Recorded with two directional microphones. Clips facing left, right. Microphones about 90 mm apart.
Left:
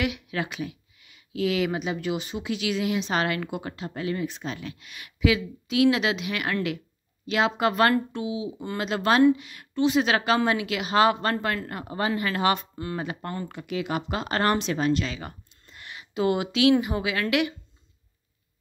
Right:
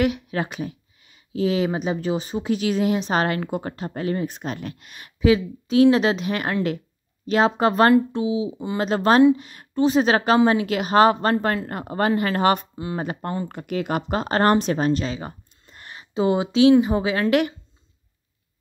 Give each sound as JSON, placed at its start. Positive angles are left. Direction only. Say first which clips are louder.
{"t": 0.0, "sound": "speech", "louder": "right 6 dB", "side_deg": -40}
{"t": 8.7, "sound": "speech", "louder": "right 5 dB", "side_deg": -40}
{"t": 15.7, "sound": "a sound", "louder": "right 5 dB", "side_deg": -40}
{"t": 16.8, "sound": "speech", "louder": "right 6 dB", "side_deg": -30}